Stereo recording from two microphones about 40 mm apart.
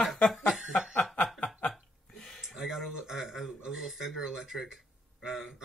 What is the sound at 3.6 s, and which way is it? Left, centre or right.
Speech, centre.